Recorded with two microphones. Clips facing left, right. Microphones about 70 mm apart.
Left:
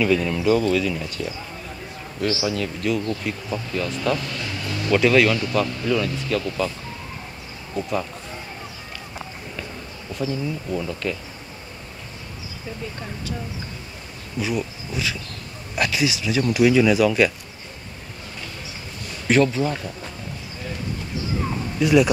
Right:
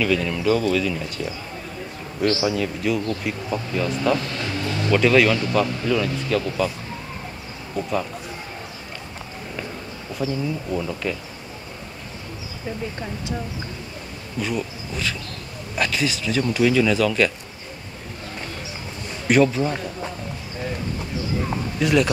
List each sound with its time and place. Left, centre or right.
0.0 s speech: centre
2.4 s speech: centre
4.3 s vehicle: right
4.9 s speech: centre
7.7 s speech: centre
10.1 s speech: centre
14.4 s bee: centre
15.7 s speech: centre
19.2 s speech: centre
21.7 s speech: centre